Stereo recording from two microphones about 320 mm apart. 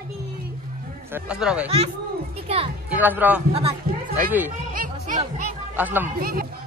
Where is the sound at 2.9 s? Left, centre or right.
Centre.